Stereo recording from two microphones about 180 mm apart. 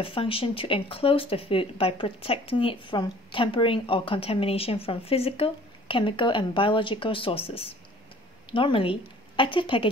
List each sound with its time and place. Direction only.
0.0 s a woman's voice: 30° left (ahead or behind)